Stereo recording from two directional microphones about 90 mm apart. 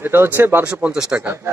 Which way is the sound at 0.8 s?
15° right (ahead or behind).